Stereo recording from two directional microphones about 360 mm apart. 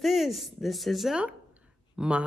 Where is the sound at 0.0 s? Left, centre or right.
Centre.